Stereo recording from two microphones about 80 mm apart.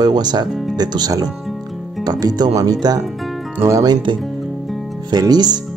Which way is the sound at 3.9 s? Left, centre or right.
Right.